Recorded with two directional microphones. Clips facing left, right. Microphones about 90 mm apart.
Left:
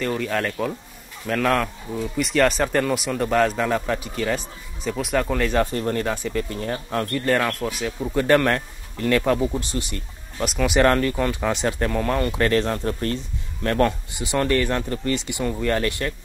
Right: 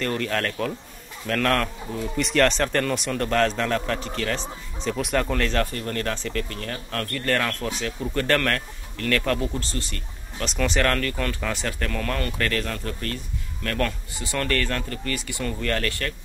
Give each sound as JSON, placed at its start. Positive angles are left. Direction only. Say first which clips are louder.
{"t": 0.0, "sound": "speech", "louder": "left 2 dB", "side_deg": 5}
{"t": 5.7, "sound": "speech", "louder": "left 4 dB", "side_deg": 20}
{"t": 10.8, "sound": "speech", "louder": "left 7 dB", "side_deg": 20}